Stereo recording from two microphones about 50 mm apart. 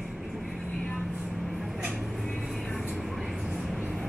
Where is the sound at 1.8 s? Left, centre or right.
Centre.